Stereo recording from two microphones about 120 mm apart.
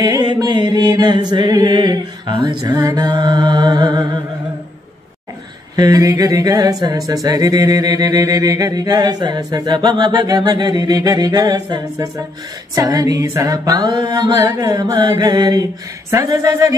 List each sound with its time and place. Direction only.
0.0 s music: 35° right (ahead or behind)
5.8 s music: 30° right (ahead or behind)
16.1 s speech: 30° right (ahead or behind)